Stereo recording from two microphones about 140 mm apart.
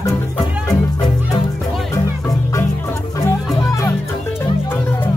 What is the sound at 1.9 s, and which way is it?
Music, 20° left (ahead or behind).